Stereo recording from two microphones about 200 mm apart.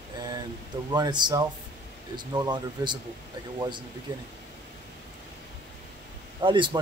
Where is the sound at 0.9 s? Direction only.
20° right (ahead or behind).